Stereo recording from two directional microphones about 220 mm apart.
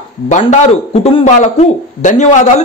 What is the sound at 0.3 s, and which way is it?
A man's voice, 30° left (ahead or behind).